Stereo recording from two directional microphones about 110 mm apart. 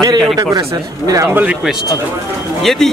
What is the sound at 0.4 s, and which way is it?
Speech, 35° right (ahead or behind).